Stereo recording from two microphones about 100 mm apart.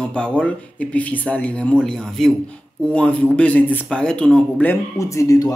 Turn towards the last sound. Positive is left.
turn(degrees=35)  # may be behind; listen again after turning